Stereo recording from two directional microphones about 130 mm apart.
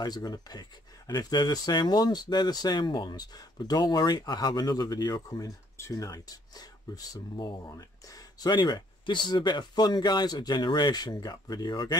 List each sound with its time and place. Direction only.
0.0 s speech: 30° left (ahead or behind)